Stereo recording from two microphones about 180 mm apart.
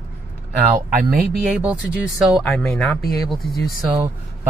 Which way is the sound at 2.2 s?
Centre (ahead or behind).